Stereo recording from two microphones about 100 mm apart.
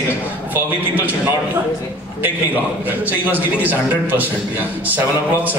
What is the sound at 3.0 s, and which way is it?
A man's voice, 15° right (ahead or behind).